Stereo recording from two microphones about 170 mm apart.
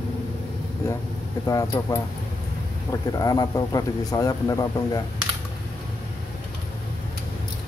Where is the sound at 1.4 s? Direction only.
20° left (ahead or behind).